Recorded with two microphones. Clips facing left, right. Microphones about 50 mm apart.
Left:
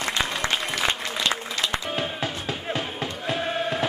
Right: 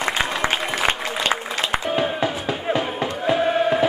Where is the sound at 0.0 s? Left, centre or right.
Right.